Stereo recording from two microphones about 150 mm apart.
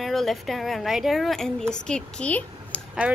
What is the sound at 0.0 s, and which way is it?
A woman's voice, centre (ahead or behind).